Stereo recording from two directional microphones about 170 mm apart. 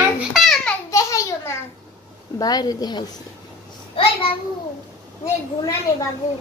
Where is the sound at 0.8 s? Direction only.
20° left (ahead or behind).